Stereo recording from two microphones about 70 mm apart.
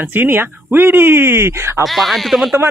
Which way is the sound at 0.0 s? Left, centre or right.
Right.